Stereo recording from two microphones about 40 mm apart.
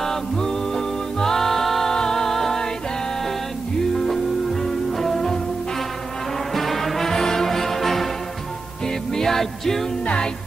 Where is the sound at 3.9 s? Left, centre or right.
Centre.